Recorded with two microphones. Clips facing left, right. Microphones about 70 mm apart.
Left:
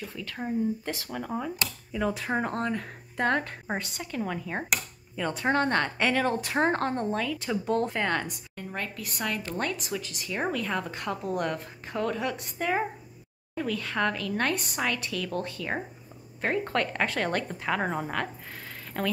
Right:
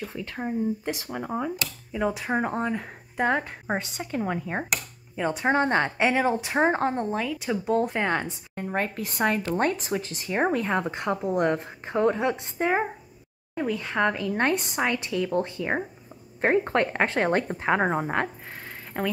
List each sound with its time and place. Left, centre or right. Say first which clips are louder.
0.0 s a woman's voice: right 3 dB; right
3.7 s a woman's voice: right 4 dB; right
8.5 s a woman's voice: right 8 dB; right